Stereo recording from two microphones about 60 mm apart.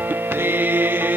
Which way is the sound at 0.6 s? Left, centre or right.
Right.